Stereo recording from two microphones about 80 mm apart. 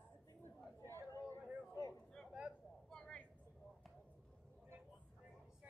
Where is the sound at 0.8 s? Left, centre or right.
Left.